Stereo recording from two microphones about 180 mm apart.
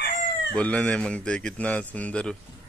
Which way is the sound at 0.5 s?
5° left (ahead or behind).